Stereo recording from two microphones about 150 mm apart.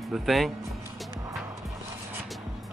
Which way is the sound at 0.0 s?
Centre (ahead or behind).